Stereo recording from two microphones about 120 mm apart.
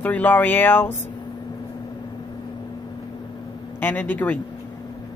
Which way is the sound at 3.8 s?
15° left (ahead or behind).